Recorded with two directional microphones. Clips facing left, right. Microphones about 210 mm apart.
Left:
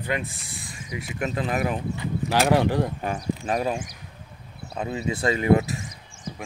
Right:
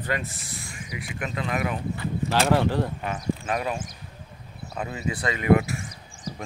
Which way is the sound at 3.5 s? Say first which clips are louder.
Left 3 dB; 35° left (ahead or behind).